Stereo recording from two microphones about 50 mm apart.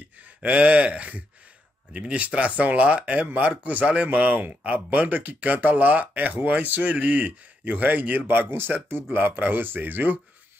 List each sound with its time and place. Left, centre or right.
0.2 s a sound: right
2.0 s speech: centre
2.2 s speech: right
8.3 s speech: right